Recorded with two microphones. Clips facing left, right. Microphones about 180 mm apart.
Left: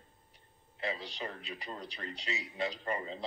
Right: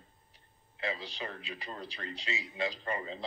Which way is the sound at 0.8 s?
Centre (ahead or behind).